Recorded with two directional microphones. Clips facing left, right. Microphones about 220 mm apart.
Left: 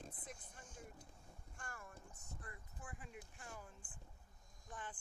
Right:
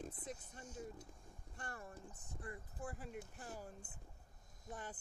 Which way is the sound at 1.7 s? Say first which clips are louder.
Right 4 dB; 30° right (ahead or behind).